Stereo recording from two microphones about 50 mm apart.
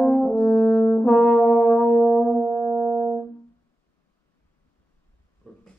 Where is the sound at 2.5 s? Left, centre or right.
Centre.